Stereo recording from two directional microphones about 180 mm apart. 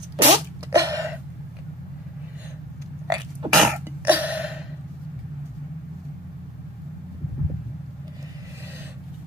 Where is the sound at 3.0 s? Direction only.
20° right (ahead or behind).